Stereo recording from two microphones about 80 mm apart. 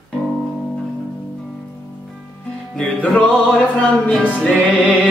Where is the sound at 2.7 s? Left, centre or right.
Centre.